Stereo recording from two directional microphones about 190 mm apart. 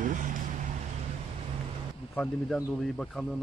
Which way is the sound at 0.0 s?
45° right (ahead or behind).